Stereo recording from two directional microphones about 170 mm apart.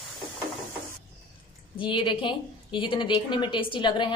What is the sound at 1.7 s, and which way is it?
A woman's voice, 30° left (ahead or behind).